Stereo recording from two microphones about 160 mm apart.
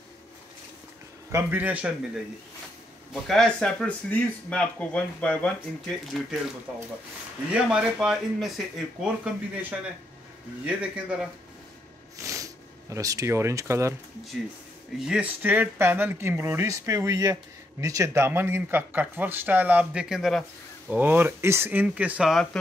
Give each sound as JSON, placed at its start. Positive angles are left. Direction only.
{"t": 1.3, "sound": "speech", "side_deg": -10}
{"t": 3.1, "sound": "speech", "side_deg": 0}
{"t": 7.5, "sound": "speech", "side_deg": -5}
{"t": 12.2, "sound": "a sound", "side_deg": -20}
{"t": 12.9, "sound": "speech", "side_deg": -20}
{"t": 15.0, "sound": "speech", "side_deg": -5}
{"t": 20.9, "sound": "speech", "side_deg": -10}